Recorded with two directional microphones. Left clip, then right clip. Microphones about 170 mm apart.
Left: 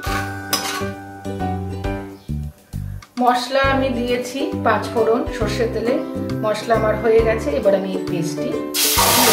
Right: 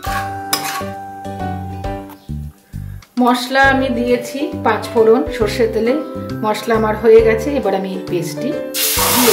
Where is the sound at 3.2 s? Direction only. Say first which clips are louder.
Right 4 dB; 65° right (ahead or behind).